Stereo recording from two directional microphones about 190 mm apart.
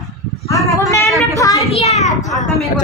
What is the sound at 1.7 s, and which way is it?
Speech, 35° left (ahead or behind).